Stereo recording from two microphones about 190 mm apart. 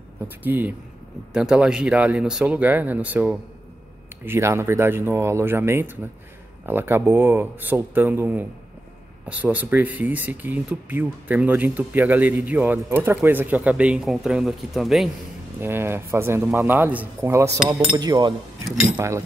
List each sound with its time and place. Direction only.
0.4 s speech: 10° right (ahead or behind)
15.6 s speech: 10° right (ahead or behind)